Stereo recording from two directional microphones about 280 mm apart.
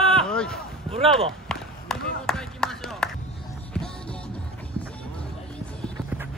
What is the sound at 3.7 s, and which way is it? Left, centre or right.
Music, centre.